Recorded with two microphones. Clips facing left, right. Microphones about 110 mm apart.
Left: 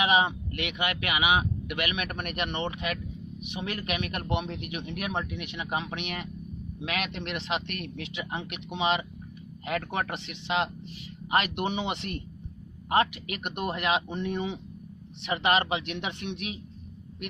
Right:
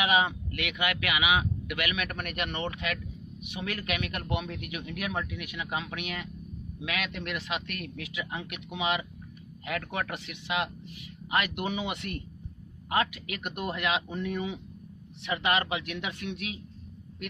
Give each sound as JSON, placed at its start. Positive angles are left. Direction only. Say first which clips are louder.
{"t": 0.0, "sound": "speech", "louder": "left 2 dB", "side_deg": 25}